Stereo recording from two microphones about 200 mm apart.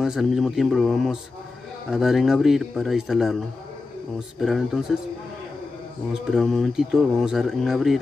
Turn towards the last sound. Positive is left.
turn(degrees=0)  # may be behind; listen again after turning